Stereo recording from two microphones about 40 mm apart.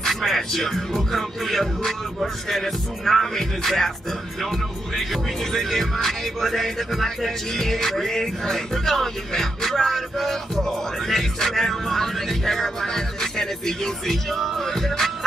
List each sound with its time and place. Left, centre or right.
0.0 s music: centre
0.9 s speech: centre
6.9 s music: centre